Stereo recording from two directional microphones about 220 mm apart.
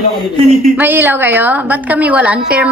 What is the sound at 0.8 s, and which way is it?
Speech, 10° right (ahead or behind).